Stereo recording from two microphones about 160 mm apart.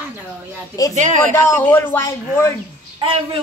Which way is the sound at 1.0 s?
50° right (ahead or behind).